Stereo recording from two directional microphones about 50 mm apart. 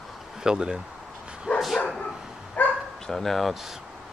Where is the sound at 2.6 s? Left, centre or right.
Left.